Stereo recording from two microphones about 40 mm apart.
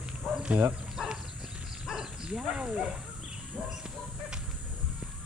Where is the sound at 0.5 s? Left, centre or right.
Right.